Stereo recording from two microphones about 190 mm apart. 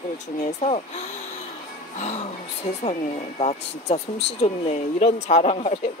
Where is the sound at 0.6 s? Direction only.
35° left (ahead or behind).